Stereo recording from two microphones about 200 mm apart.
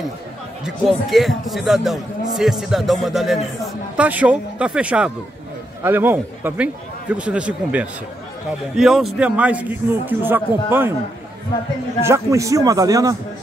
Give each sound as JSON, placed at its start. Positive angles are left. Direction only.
{"t": 0.7, "sound": "a man's voice", "side_deg": 0}
{"t": 12.0, "sound": "a man's voice", "side_deg": -15}